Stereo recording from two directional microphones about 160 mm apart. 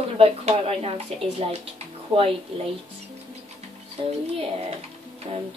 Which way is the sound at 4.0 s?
35° right (ahead or behind).